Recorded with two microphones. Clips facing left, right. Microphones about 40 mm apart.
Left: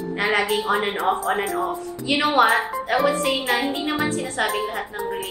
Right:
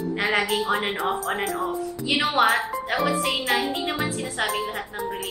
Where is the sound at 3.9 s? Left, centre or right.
Centre.